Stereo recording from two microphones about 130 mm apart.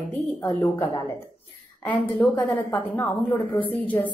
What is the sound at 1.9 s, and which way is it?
A woman's voice, 10° left (ahead or behind).